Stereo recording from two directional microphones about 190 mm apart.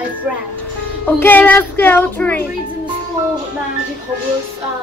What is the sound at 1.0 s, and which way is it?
A woman's voice, 10° left (ahead or behind).